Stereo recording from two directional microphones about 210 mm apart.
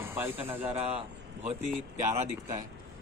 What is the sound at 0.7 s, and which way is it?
Speech, 30° right (ahead or behind).